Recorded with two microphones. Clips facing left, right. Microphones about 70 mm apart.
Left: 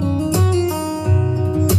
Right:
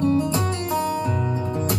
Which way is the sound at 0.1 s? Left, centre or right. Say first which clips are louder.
Left 3 dB; right.